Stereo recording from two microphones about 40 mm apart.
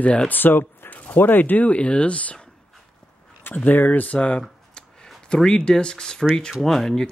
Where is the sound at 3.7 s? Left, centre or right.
Left.